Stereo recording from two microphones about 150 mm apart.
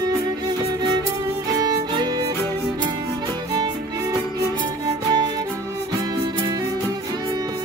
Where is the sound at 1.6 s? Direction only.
30° right (ahead or behind).